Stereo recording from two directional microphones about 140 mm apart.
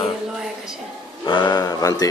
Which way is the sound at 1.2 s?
35° left (ahead or behind).